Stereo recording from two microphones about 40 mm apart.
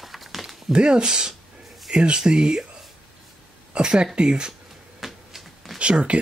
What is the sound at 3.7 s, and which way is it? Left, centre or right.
Speech, right.